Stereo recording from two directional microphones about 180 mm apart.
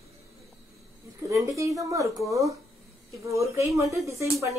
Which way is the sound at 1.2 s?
15° right (ahead or behind).